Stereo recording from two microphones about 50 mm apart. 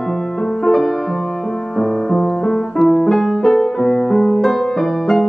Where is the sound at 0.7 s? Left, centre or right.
Centre.